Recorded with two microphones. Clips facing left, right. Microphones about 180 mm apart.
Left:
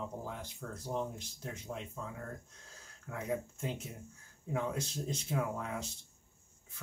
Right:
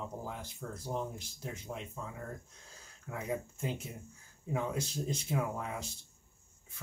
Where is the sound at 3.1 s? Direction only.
10° right (ahead or behind).